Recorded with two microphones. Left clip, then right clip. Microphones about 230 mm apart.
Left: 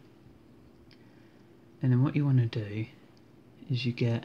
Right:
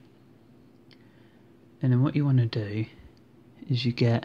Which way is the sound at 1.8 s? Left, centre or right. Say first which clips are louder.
Right 3 dB; centre.